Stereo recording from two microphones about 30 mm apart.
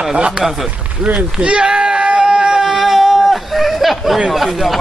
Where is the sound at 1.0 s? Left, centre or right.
Right.